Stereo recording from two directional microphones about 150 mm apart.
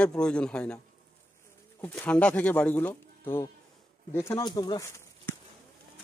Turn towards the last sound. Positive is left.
turn(degrees=20)  # may be behind; listen again after turning